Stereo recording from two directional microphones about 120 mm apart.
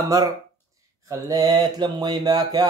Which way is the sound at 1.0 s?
30° right (ahead or behind).